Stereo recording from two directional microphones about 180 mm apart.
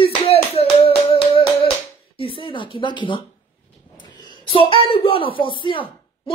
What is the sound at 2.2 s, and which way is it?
Speech, 30° left (ahead or behind).